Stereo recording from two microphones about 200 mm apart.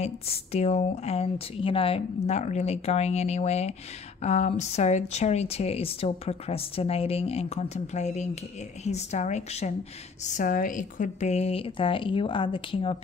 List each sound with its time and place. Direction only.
0.0 s a woman's voice: 30° left (ahead or behind)